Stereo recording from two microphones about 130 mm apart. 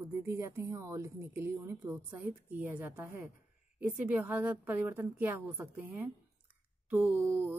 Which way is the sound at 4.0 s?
10° right (ahead or behind).